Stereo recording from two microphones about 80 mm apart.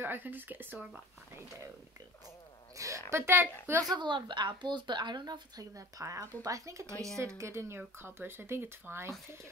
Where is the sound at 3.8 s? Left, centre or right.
Right.